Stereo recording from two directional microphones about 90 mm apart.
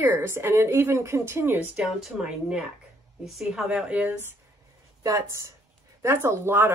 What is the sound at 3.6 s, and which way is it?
Speech, 15° right (ahead or behind).